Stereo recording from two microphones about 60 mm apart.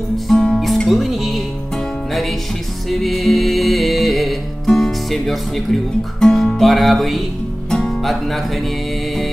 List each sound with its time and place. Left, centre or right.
0.3 s music: centre
2.9 s music: centre